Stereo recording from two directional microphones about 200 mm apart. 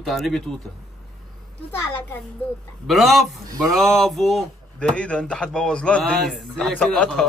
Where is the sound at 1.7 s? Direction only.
10° left (ahead or behind).